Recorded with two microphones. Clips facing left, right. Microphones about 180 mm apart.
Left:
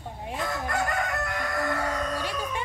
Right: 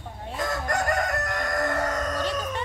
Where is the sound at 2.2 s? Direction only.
15° left (ahead or behind).